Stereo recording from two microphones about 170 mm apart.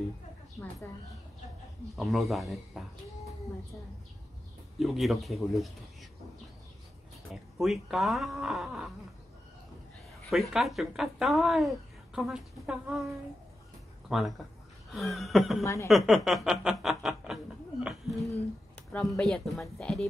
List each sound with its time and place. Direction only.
2.0 s speech: centre (ahead or behind)
4.7 s speech: centre (ahead or behind)
7.5 s speech: centre (ahead or behind)
10.3 s speech: centre (ahead or behind)
14.0 s speech: centre (ahead or behind)
15.6 s a woman's voice: 20° left (ahead or behind)
15.9 s speech: centre (ahead or behind)